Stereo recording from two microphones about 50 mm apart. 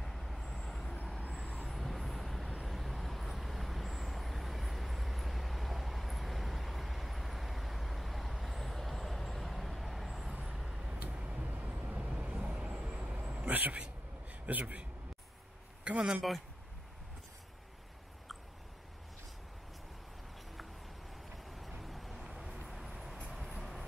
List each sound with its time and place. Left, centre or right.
0.0 s vehicle: centre
10.3 s vehicle: centre
10.9 s vehicle: centre
13.4 s a sound: right
14.4 s a man's voice: right
15.8 s a man's voice: right
21.5 s vehicle: centre